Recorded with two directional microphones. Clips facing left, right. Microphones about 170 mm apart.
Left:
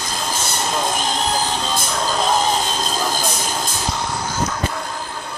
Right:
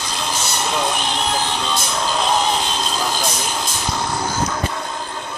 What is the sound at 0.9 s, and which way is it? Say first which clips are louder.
Music: left 1 dB; 40° left (ahead or behind).